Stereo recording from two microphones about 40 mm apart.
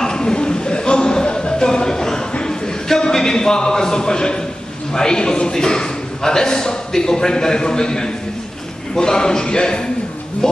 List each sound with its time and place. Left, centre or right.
0.0 s a sound: centre
4.9 s a man's voice: centre
10.4 s music: centre